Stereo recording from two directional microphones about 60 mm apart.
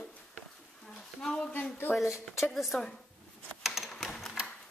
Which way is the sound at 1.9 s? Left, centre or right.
Left.